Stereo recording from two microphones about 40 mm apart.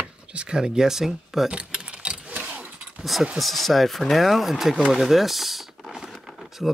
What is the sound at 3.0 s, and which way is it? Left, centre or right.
Speech, centre.